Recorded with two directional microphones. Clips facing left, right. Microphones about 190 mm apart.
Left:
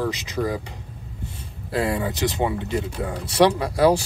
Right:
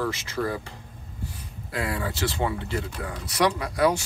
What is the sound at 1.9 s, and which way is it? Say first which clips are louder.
Speech: left 4 dB; 20° left (ahead or behind).